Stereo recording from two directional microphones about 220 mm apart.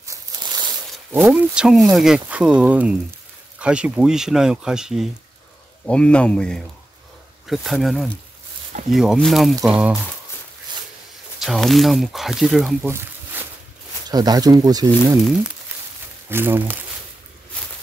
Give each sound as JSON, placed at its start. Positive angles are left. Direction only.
{"t": 0.0, "sound": "a sound", "side_deg": -15}
{"t": 1.1, "sound": "speech", "side_deg": -5}
{"t": 11.4, "sound": "speech", "side_deg": 0}
{"t": 14.0, "sound": "speech", "side_deg": -20}
{"t": 16.3, "sound": "speech", "side_deg": -10}